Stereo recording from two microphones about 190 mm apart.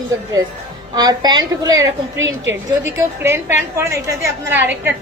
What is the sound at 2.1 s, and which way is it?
Speech, 80° right.